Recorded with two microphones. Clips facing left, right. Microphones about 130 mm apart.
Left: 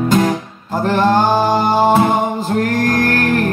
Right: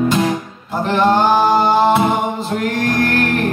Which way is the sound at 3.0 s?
40° left (ahead or behind).